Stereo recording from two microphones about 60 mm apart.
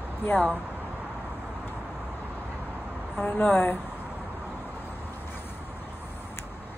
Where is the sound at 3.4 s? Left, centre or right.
Left.